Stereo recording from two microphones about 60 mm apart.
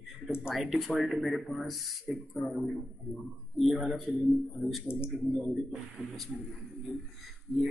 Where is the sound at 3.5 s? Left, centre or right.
Centre.